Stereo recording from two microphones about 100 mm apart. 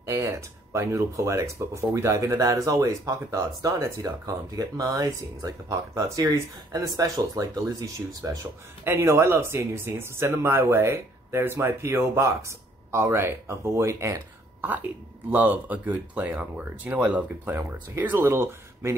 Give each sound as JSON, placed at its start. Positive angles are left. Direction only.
{"t": 0.1, "sound": "speech", "side_deg": -30}
{"t": 14.6, "sound": "speech", "side_deg": -15}